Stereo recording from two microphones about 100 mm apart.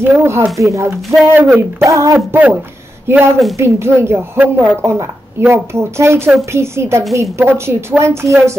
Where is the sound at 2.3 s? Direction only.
15° right (ahead or behind).